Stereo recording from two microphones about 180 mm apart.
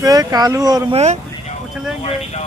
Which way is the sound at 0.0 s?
20° right (ahead or behind).